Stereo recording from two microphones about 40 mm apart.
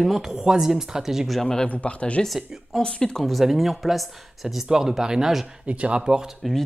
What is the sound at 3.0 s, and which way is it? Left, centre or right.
Speech, centre.